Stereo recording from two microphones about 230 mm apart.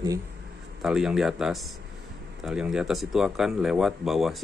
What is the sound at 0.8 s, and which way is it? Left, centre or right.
Speech, centre.